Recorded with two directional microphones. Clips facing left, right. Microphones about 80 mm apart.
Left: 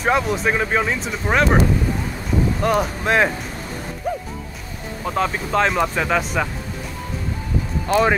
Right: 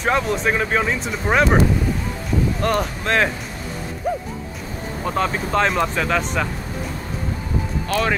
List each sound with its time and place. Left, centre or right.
0.0 s speech: centre
2.6 s speech: centre
5.0 s speech: centre
7.9 s speech: centre